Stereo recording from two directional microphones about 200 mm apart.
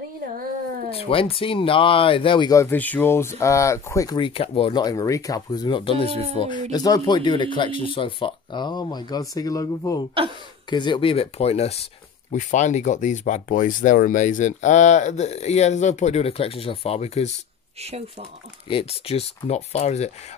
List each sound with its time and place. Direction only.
0.9 s speech: 30° left (ahead or behind)
6.0 s speech: 30° right (ahead or behind)
6.3 s speech: 25° left (ahead or behind)
18.7 s speech: 30° left (ahead or behind)